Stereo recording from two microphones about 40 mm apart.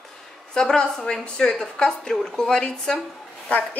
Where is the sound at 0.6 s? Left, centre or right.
Centre.